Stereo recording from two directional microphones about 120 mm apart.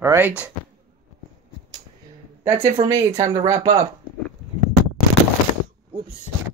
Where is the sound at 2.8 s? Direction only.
55° right (ahead or behind).